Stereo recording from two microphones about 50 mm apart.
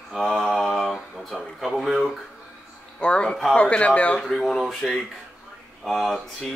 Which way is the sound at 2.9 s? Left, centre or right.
Left.